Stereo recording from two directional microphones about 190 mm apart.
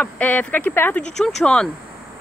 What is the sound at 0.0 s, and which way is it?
Speech, 10° left (ahead or behind).